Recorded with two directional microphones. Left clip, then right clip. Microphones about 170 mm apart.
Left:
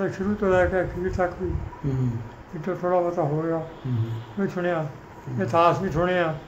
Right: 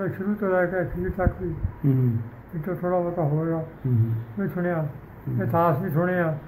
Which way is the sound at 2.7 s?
20° left (ahead or behind).